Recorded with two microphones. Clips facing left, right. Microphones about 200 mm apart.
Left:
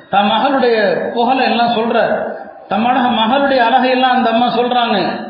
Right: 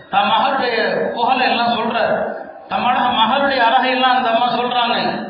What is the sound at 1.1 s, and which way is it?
Speech, 45° left (ahead or behind).